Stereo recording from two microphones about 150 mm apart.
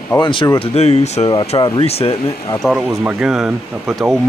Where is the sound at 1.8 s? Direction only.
45° left (ahead or behind).